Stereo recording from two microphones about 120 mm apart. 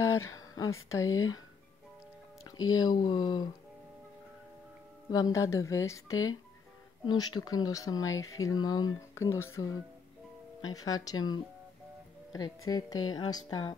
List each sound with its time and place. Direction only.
0.0 s speech: 25° left (ahead or behind)
2.4 s speech: 30° left (ahead or behind)
5.1 s a woman's voice: 30° left (ahead or behind)
9.1 s a woman's voice: 20° left (ahead or behind)